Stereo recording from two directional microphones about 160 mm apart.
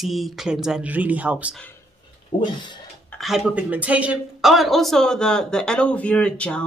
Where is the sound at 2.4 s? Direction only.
30° left (ahead or behind).